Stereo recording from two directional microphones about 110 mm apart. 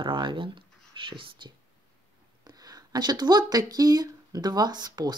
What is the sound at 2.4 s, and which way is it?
Speech, 35° right (ahead or behind).